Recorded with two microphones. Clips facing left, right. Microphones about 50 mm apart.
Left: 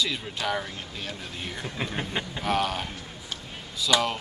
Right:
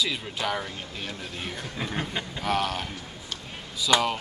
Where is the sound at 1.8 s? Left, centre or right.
Left.